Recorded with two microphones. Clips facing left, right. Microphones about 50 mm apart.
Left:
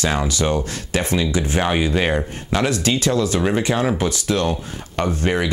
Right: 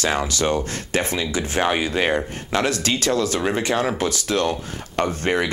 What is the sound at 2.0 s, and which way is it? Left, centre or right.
Speech, centre.